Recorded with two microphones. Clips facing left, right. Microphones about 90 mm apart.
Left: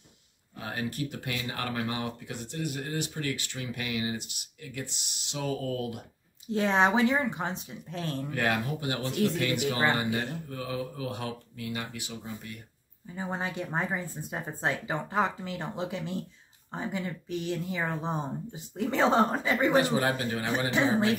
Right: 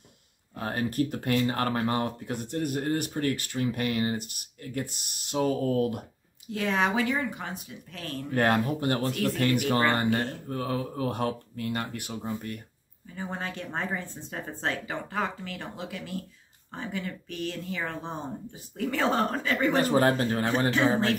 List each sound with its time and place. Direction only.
0.6 s speech: 45° right (ahead or behind)
6.4 s speech: 25° left (ahead or behind)
8.3 s speech: 45° right (ahead or behind)
13.1 s speech: 20° left (ahead or behind)
19.8 s speech: 45° right (ahead or behind)